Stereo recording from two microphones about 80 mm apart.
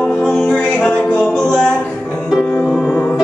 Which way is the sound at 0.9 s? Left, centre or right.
Centre.